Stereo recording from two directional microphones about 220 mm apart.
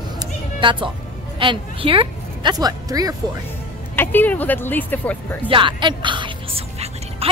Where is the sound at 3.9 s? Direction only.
10° left (ahead or behind).